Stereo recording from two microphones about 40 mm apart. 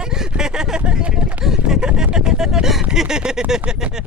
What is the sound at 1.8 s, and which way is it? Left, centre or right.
Vehicle, right.